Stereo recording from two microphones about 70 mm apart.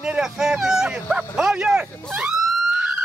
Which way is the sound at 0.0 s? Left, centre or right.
Centre.